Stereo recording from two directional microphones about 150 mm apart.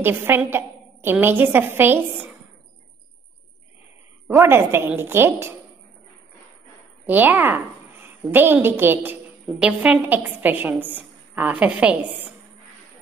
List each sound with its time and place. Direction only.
0.0 s a woman's voice: 15° right (ahead or behind)
4.3 s a woman's voice: 15° right (ahead or behind)
7.1 s a woman's voice: 10° right (ahead or behind)